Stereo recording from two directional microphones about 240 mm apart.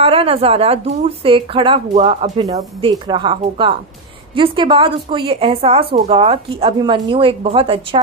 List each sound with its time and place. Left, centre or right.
0.0 s speech: right